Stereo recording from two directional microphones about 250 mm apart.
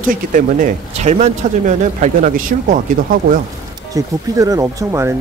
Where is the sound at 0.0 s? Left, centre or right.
Right.